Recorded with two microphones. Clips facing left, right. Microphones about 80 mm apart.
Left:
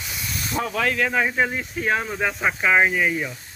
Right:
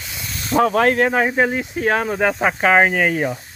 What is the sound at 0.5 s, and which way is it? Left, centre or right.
Speech, right.